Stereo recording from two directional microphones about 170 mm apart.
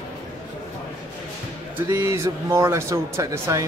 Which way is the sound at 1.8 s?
15° right (ahead or behind).